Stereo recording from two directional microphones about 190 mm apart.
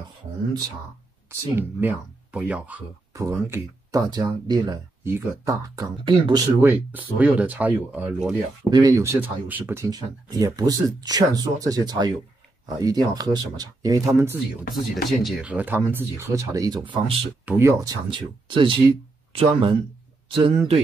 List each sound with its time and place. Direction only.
1.3 s speech: 10° right (ahead or behind)
6.6 s speech: 10° right (ahead or behind)
8.6 s speech: 20° right (ahead or behind)
15.0 s speech: 5° right (ahead or behind); by 17.2 s 25° right (ahead or behind)
17.5 s speech: 15° right (ahead or behind); by 20.8 s 30° right (ahead or behind)